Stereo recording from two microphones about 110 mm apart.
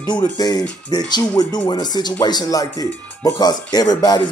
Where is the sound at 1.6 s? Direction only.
40° left (ahead or behind).